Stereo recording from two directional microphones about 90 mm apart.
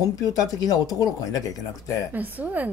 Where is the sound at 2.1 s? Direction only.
20° right (ahead or behind).